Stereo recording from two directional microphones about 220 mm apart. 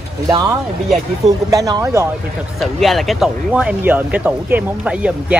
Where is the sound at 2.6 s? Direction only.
Centre (ahead or behind).